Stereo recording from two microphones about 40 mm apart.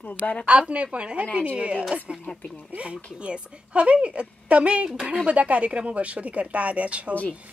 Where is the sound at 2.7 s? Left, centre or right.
Right.